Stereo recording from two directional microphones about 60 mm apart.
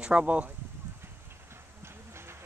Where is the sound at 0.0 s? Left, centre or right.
Centre.